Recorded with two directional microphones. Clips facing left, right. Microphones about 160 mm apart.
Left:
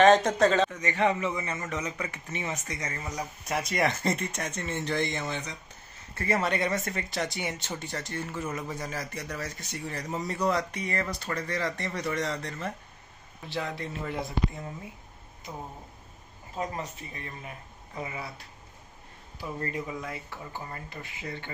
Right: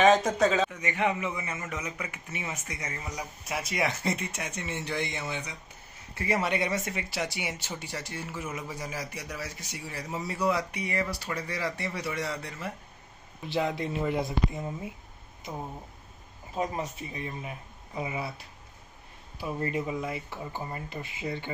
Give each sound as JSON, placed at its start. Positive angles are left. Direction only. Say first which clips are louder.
{"t": 0.0, "sound": "speech", "louder": "left 2 dB", "side_deg": 0}
{"t": 13.5, "sound": "speech", "louder": "right 5 dB", "side_deg": -20}
{"t": 16.5, "sound": "speech", "louder": "right 3 dB", "side_deg": -15}
{"t": 19.4, "sound": "speech", "louder": "right 3 dB", "side_deg": -20}